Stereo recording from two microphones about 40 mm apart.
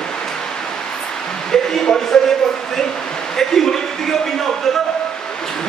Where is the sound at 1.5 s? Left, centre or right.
Centre.